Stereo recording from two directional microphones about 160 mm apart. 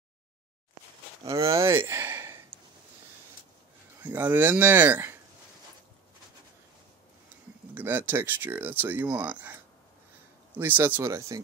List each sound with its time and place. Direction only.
1.5 s speech: 15° right (ahead or behind)
4.0 s speech: 10° right (ahead or behind)
7.7 s speech: 10° right (ahead or behind)